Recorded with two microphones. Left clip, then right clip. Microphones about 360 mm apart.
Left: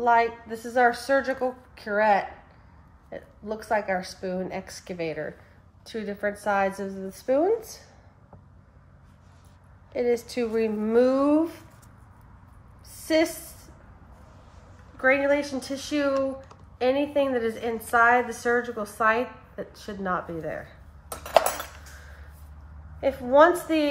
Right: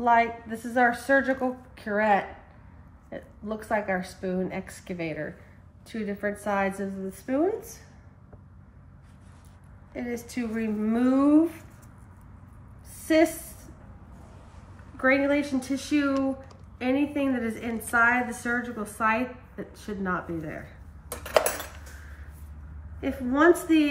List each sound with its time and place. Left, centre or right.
0.0 s a woman's voice: centre
9.9 s a woman's voice: centre
12.9 s a sound: centre
15.0 s a woman's voice: centre
22.9 s a woman's voice: centre